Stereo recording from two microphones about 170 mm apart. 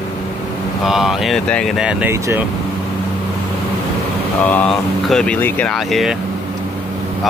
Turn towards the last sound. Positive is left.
turn(degrees=0)  # may be behind; listen again after turning